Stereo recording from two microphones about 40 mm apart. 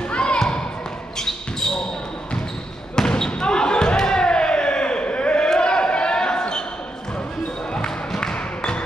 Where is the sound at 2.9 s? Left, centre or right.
Centre.